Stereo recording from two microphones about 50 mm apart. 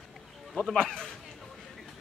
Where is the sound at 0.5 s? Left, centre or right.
Centre.